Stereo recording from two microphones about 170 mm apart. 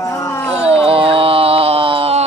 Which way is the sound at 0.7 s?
35° right (ahead or behind).